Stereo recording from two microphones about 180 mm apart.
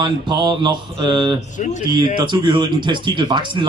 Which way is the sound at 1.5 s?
40° left (ahead or behind).